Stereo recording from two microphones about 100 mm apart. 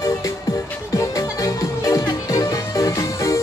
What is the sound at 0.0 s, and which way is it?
Music, 35° left (ahead or behind).